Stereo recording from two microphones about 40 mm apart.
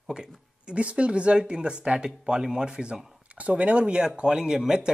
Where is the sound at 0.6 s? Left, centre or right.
Right.